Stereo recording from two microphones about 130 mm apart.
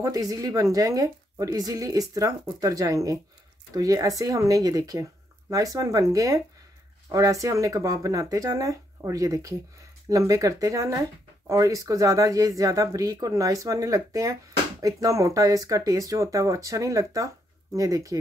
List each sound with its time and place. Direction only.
0.0 s a woman's voice: 30° right (ahead or behind)